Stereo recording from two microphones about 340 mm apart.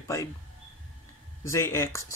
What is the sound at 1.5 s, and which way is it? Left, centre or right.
Speech, centre.